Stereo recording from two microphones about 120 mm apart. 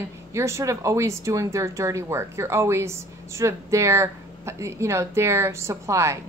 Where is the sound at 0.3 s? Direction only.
25° right (ahead or behind).